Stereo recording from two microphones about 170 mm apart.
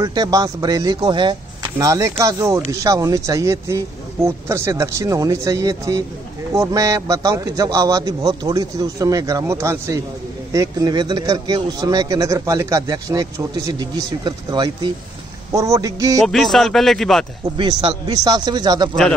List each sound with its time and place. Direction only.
0.0 s a man's voice: 20° right (ahead or behind)
16.2 s speech: centre (ahead or behind)
17.6 s a man's voice: 25° right (ahead or behind)